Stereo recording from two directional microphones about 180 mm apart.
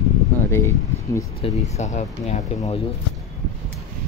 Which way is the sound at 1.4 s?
30° left (ahead or behind).